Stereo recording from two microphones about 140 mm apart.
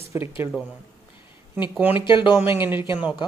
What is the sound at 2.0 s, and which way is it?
Speech, 35° left (ahead or behind).